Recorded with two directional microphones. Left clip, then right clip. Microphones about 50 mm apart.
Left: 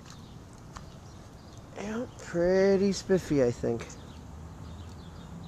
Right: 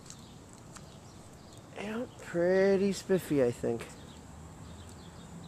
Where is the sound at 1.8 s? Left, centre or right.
Left.